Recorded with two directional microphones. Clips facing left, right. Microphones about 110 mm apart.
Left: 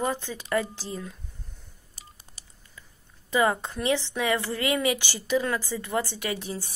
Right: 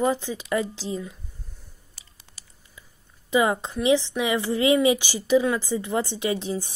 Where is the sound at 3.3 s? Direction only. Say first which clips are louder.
Right 2 dB; 15° right (ahead or behind).